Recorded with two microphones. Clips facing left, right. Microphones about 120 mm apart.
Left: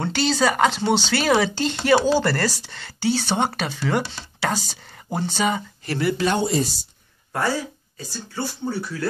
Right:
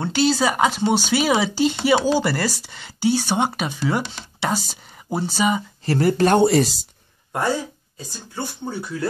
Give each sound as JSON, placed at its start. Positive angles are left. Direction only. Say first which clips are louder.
{"t": 0.0, "sound": "speech", "louder": "right 2 dB", "side_deg": -5}
{"t": 5.9, "sound": "speech", "louder": "right 5 dB", "side_deg": -40}
{"t": 8.0, "sound": "speech", "louder": "left 1 dB", "side_deg": -20}